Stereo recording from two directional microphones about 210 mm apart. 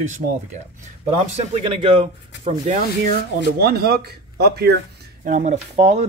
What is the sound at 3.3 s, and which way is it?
Speech, 50° right (ahead or behind).